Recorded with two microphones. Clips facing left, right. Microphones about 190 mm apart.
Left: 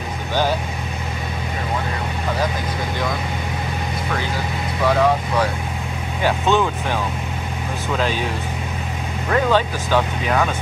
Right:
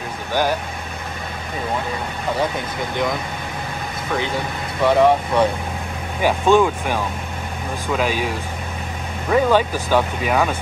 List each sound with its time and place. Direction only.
4.8 s speech: 25° right (ahead or behind)
6.2 s speech: 10° right (ahead or behind)
9.3 s speech: 10° right (ahead or behind)